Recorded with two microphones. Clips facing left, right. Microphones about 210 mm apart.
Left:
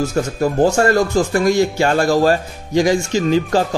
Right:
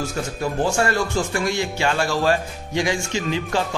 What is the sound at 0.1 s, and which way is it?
Speech, 40° left (ahead or behind).